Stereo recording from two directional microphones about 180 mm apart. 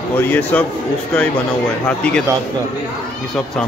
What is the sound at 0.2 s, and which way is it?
Speech, 10° left (ahead or behind).